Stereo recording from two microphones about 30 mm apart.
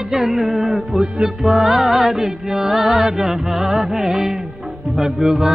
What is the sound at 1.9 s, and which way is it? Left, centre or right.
Music, centre.